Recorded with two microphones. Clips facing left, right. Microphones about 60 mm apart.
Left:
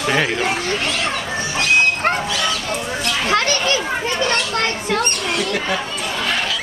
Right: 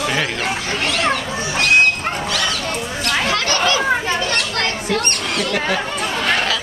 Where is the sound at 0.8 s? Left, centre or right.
Right.